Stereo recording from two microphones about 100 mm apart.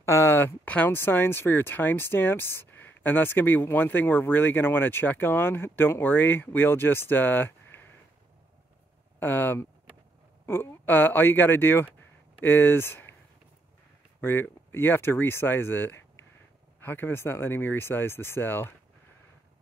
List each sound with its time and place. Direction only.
0.0 s a sound: 30° left (ahead or behind)
0.7 s speech: 20° left (ahead or behind)
9.2 s speech: 20° left (ahead or behind)
14.2 s speech: 20° left (ahead or behind)